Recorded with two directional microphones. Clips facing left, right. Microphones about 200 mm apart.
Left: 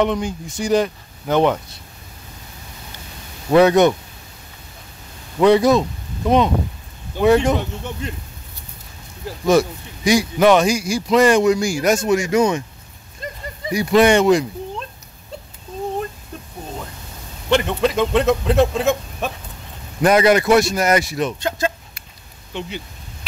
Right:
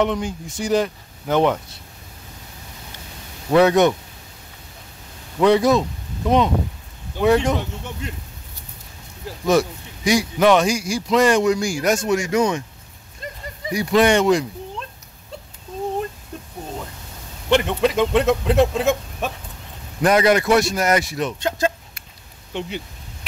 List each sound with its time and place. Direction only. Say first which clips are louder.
0.0 s a man's voice: left 2 dB; 5° right (ahead or behind)
3.5 s a man's voice: left 2 dB; centre (ahead or behind)
5.4 s speech: left 2 dB; centre (ahead or behind)
7.3 s speech: left 3 dB; 10° left (ahead or behind)
9.5 s a man's voice: left 2 dB; centre (ahead or behind)
13.7 s speech: left 2 dB; 5° left (ahead or behind)
17.5 s speech: even; 15° right (ahead or behind)
20.0 s a man's voice: left 2 dB; 5° left (ahead or behind)
21.5 s a sound: right 1 dB; 45° right (ahead or behind)
22.5 s speech: right 1 dB; 55° right (ahead or behind)